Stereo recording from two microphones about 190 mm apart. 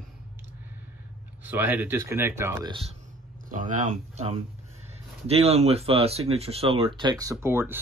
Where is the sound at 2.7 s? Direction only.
30° right (ahead or behind).